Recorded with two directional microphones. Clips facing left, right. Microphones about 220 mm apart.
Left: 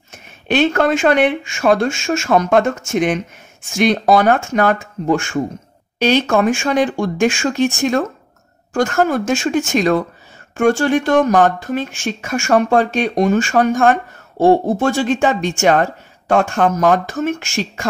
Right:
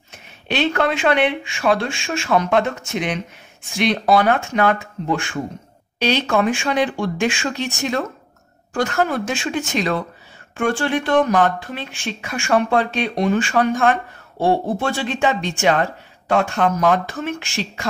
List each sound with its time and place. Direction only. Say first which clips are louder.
0.1 s speech: left 6 dB; 50° left (ahead or behind)